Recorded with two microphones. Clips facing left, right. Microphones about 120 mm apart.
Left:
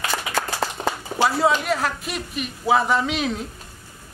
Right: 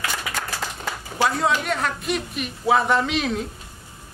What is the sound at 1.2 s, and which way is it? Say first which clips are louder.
A man's voice: left 2 dB; 5° left (ahead or behind).